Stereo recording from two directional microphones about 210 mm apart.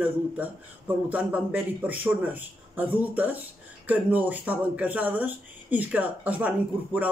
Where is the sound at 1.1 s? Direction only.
5° right (ahead or behind).